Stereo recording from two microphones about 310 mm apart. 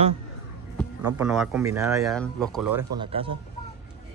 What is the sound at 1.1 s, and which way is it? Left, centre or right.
A man's voice, centre.